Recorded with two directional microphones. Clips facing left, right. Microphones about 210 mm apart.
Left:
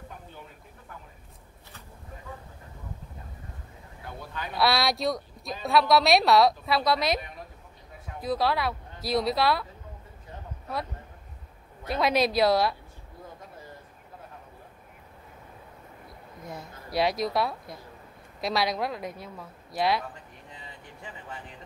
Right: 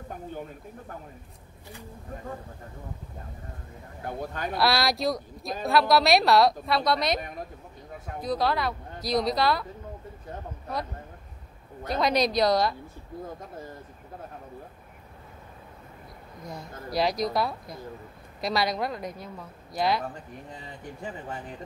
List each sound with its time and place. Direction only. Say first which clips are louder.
0.1 s speech: right 9 dB; 45° right (ahead or behind)
4.0 s speech: right 6 dB; 45° right (ahead or behind)
4.6 s a woman's voice: even; centre (ahead or behind)
7.2 s a woman's voice: right 3 dB; 45° right (ahead or behind)
8.2 s a woman's voice: even; centre (ahead or behind)
11.9 s a woman's voice: even; 5° left (ahead or behind)
16.4 s a woman's voice: right 3 dB; 5° left (ahead or behind)
21.0 s speech: right 5 dB; 45° right (ahead or behind)